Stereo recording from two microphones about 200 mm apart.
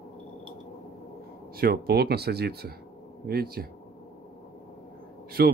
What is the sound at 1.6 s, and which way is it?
Speech, 50° right (ahead or behind).